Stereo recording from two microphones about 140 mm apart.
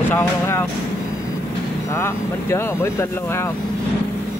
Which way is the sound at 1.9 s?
20° left (ahead or behind).